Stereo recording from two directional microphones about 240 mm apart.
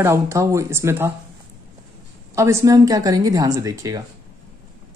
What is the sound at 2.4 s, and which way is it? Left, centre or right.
Speech, centre.